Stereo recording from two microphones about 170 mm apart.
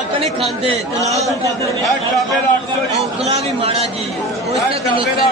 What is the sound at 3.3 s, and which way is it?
A man's voice, 35° right (ahead or behind).